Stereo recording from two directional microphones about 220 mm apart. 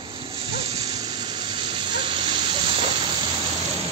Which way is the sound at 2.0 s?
20° right (ahead or behind).